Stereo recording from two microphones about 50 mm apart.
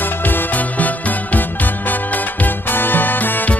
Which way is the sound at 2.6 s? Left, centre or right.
Left.